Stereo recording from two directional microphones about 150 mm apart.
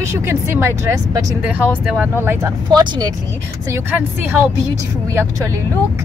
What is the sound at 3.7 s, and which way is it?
Speech, 15° right (ahead or behind).